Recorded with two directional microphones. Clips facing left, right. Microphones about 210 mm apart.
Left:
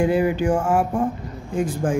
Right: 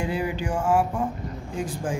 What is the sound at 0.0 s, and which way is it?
Speech, 50° left (ahead or behind).